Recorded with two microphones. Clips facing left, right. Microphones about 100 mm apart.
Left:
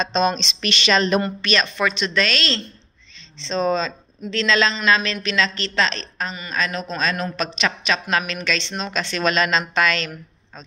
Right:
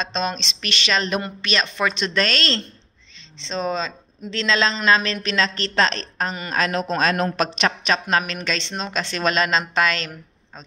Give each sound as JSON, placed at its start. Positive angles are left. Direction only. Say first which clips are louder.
{"t": 0.0, "sound": "speech", "louder": "left 5 dB", "side_deg": 0}
{"t": 1.4, "sound": "speech", "louder": "left 1 dB", "side_deg": -20}
{"t": 3.3, "sound": "speech", "louder": "left 4 dB", "side_deg": -15}